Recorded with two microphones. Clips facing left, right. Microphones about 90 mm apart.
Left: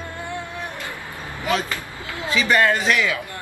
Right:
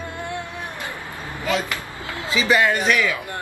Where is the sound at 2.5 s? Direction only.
5° right (ahead or behind).